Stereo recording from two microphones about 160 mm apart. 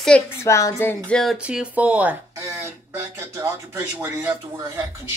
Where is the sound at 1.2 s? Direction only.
5° right (ahead or behind); by 4.8 s 20° right (ahead or behind).